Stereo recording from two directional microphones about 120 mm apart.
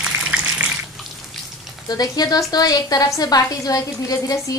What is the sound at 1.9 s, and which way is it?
A woman's voice, 30° left (ahead or behind).